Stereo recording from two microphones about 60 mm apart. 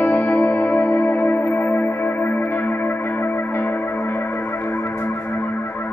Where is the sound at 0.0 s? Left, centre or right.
Left.